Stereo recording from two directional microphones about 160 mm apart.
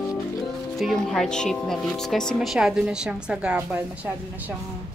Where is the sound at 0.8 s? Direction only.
Centre (ahead or behind).